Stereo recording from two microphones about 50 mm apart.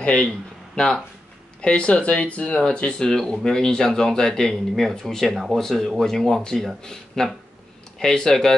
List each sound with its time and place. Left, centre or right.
0.0 s a man's voice: left